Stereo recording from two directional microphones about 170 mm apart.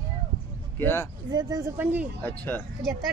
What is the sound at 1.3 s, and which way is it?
Speech, 25° right (ahead or behind).